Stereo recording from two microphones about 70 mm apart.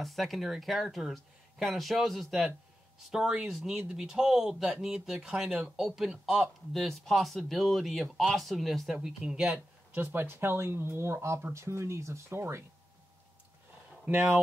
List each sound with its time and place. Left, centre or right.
0.0 s speech: centre
9.9 s speech: right
14.1 s speech: right